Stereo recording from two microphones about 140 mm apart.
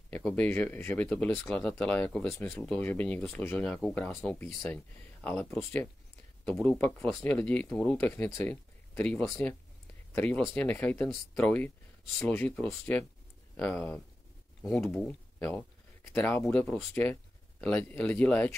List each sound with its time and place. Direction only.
0.1 s speech: 10° left (ahead or behind)